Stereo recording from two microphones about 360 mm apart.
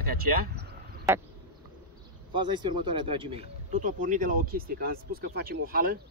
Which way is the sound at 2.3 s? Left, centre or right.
Centre.